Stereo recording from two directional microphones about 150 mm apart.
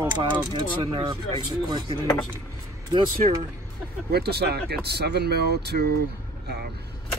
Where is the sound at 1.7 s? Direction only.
30° right (ahead or behind).